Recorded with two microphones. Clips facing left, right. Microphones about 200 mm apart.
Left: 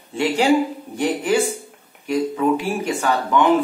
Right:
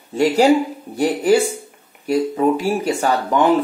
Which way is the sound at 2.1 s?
35° right (ahead or behind).